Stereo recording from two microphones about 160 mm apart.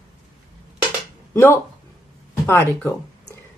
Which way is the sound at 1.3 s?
15° left (ahead or behind).